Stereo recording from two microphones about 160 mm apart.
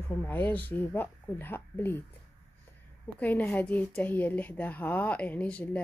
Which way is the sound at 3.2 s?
10° left (ahead or behind).